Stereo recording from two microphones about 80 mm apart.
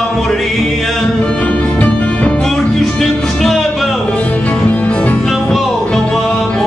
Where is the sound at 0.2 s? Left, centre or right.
Centre.